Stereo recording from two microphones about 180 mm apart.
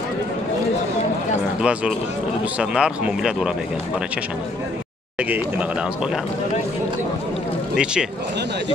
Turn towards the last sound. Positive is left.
turn(degrees=-5)  # may be behind; listen again after turning